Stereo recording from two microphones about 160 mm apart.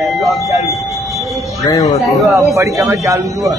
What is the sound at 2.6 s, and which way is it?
Speech, 20° right (ahead or behind).